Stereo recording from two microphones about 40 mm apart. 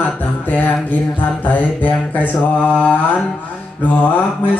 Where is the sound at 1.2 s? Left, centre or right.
Left.